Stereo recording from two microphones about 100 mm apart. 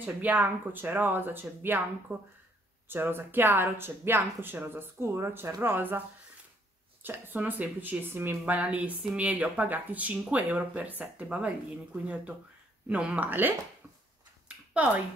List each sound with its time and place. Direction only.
0.0 s speech: 15° right (ahead or behind)
14.7 s speech: 15° right (ahead or behind)